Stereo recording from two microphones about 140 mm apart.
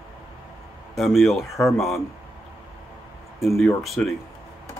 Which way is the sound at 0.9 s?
Centre (ahead or behind).